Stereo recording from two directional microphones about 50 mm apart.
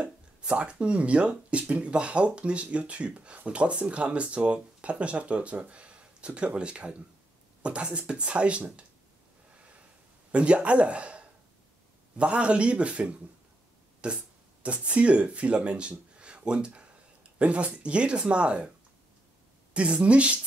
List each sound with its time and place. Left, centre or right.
0.0 s speech: right
10.3 s speech: right
16.2 s a sound: right
17.4 s speech: right
19.7 s speech: right